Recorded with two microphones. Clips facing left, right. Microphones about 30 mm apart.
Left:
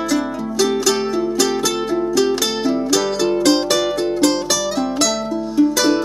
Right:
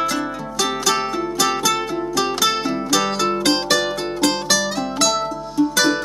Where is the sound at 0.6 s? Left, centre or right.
Centre.